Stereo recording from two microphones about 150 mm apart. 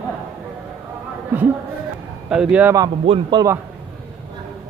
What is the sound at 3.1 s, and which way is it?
Speech, 30° right (ahead or behind).